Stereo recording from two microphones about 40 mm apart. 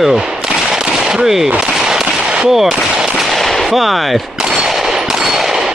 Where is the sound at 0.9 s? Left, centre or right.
Centre.